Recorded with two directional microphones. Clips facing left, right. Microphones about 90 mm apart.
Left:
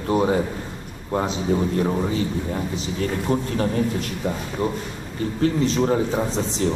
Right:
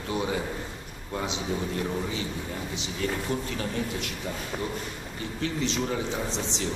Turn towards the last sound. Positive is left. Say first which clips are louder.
# left 7 dB
turn(degrees=40)  # may be behind; listen again after turning